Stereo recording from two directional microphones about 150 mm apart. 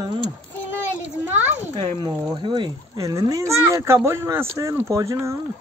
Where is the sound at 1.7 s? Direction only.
25° right (ahead or behind).